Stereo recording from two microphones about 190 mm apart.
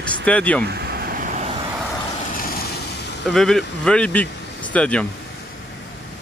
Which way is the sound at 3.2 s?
Centre (ahead or behind).